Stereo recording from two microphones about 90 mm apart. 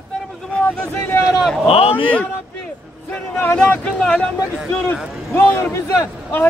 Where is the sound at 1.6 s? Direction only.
90° left.